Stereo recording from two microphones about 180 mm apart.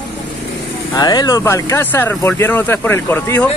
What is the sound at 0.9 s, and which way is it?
Speech, 20° left (ahead or behind).